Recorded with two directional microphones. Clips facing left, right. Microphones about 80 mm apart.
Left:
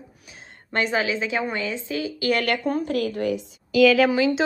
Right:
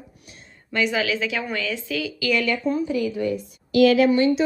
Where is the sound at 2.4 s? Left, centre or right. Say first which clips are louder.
Right 1 dB; left.